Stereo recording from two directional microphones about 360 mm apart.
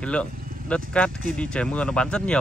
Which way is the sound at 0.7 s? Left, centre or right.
Centre.